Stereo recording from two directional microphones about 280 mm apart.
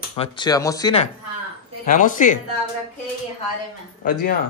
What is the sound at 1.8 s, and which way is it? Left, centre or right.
Speech, left.